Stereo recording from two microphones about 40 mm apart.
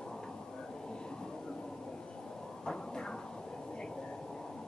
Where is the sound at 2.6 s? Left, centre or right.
Centre.